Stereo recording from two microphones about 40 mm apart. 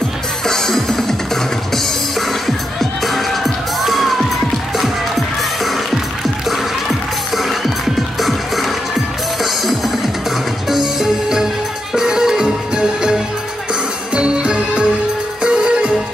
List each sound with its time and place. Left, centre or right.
0.5 s music: centre
7.3 s music: centre; by 15.9 s right